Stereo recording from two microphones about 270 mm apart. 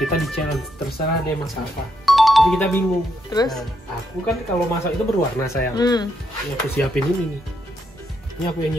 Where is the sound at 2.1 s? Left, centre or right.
Centre.